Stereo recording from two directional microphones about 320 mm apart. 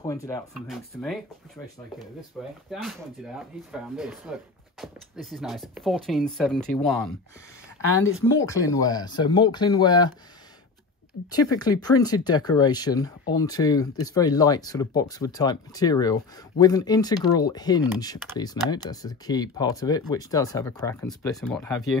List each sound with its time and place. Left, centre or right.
0.0 s speech: centre
0.7 s speech: centre
2.4 s speech: centre
8.0 s speech: left
8.5 s speech: centre
11.2 s speech: centre